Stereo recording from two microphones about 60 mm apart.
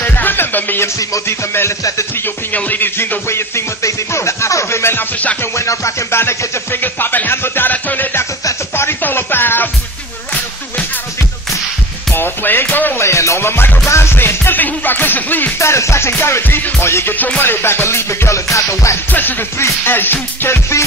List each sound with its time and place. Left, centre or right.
0.0 s music: left
1.2 s music: left
2.2 s speech: left
3.3 s music: left
4.9 s music: left
5.4 s speech: left
8.7 s speech: left
12.1 s music: left
12.9 s speech: left
15.6 s music: left
17.1 s music: left
19.6 s speech: left